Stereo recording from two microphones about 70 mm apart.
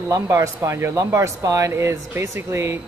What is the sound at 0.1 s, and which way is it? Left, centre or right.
Speech, right.